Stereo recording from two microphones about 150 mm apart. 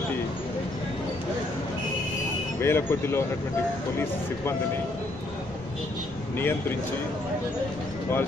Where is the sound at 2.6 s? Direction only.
15° left (ahead or behind).